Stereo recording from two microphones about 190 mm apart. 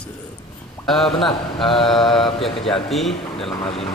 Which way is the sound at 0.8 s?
Centre (ahead or behind).